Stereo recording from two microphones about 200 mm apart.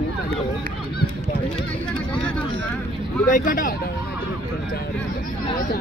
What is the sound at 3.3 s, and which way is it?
Speech, 40° left (ahead or behind).